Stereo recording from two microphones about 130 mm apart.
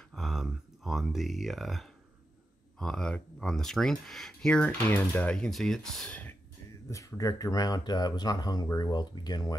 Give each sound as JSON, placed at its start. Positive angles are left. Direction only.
{"t": 0.1, "sound": "a sound", "side_deg": 0}
{"t": 2.8, "sound": "speech", "side_deg": 5}
{"t": 6.9, "sound": "speech", "side_deg": 25}